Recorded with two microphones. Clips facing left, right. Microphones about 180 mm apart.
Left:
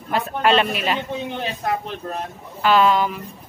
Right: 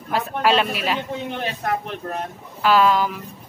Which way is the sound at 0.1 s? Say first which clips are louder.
Left 1 dB; 5° right (ahead or behind).